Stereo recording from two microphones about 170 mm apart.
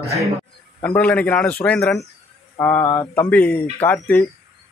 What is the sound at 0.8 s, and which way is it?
Speech, 10° left (ahead or behind).